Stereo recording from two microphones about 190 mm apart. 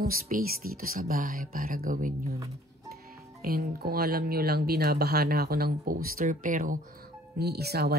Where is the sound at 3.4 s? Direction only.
55° right (ahead or behind).